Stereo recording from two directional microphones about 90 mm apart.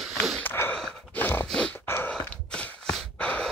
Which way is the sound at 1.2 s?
25° left (ahead or behind).